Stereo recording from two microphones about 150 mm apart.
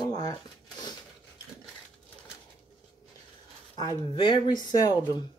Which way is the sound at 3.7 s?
30° left (ahead or behind).